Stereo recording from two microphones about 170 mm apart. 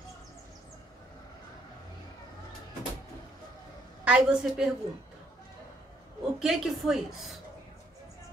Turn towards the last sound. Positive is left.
turn(degrees=0)  # may be behind; listen again after turning